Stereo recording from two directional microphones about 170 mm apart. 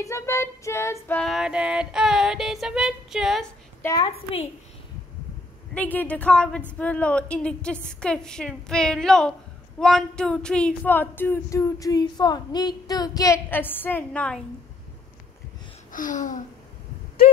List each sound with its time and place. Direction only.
0.0 s female singing: 15° left (ahead or behind); by 3.4 s centre (ahead or behind)
3.8 s a woman's voice: 20° left (ahead or behind)
5.8 s speech: 10° left (ahead or behind)
6.8 s female singing: 5° left (ahead or behind)
9.8 s speech: 5° left (ahead or behind)
15.9 s a sound: 50° left (ahead or behind)